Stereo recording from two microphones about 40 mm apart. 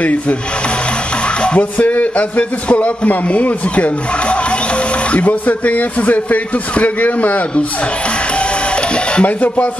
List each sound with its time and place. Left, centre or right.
0.0 s a man's voice: left
1.6 s a man's voice: left
9.2 s a man's voice: left